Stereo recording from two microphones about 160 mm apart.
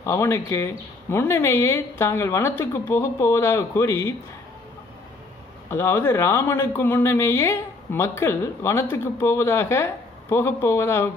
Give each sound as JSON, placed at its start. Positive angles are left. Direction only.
{"t": 0.0, "sound": "speech", "side_deg": 15}
{"t": 5.7, "sound": "speech", "side_deg": 15}